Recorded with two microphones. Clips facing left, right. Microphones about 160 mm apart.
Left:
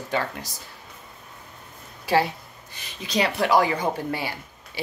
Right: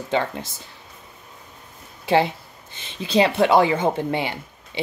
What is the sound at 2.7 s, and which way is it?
Speech, 30° right (ahead or behind).